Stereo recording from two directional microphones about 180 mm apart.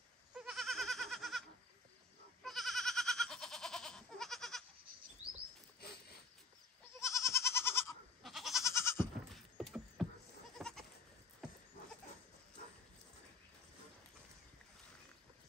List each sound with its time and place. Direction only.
0.3 s goat: centre (ahead or behind)
2.4 s goat: centre (ahead or behind)
5.8 s a sound: 60° left (ahead or behind)
7.0 s goat: 15° left (ahead or behind)
8.2 s goat: centre (ahead or behind)
8.6 s goat: 15° left (ahead or behind)
9.3 s rodents: centre (ahead or behind)
10.6 s goat: 5° left (ahead or behind)